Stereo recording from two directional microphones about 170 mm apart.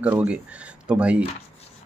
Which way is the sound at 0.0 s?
10° right (ahead or behind).